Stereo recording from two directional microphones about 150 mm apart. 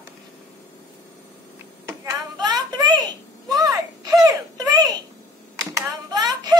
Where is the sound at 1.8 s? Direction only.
25° right (ahead or behind).